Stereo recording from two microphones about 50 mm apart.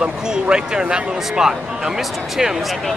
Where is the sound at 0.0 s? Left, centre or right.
Centre.